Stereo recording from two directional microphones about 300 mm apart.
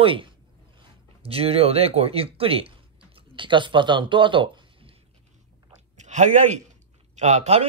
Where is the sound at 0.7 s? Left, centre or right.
Centre.